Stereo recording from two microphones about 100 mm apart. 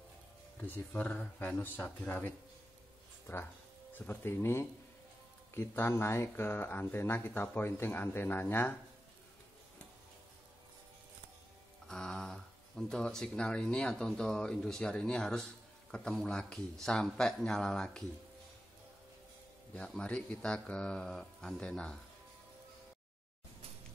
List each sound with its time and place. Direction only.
0.6 s speech: 15° left (ahead or behind)
3.3 s speech: 30° left (ahead or behind)
4.0 s speech: 20° left (ahead or behind)
11.9 s speech: 5° left (ahead or behind)
19.7 s speech: 10° left (ahead or behind)